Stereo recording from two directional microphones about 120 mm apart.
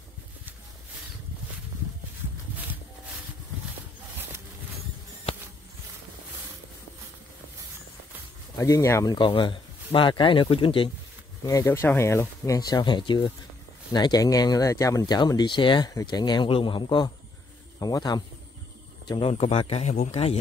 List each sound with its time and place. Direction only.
8.5 s speech: 25° left (ahead or behind)
9.1 s speech: 40° left (ahead or behind)
11.4 s speech: 25° left (ahead or behind); by 15.9 s 40° left (ahead or behind)
15.9 s speech: 30° left (ahead or behind)
19.0 s speech: 50° left (ahead or behind)
19.3 s speech: 70° left (ahead or behind)